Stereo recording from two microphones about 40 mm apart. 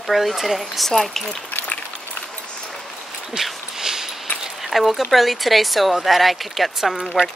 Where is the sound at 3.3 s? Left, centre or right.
Centre.